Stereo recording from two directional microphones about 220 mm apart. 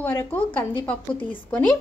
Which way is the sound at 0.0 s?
10° left (ahead or behind).